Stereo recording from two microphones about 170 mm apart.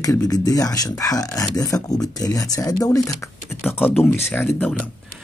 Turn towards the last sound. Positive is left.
turn(degrees=10)  # may be behind; listen again after turning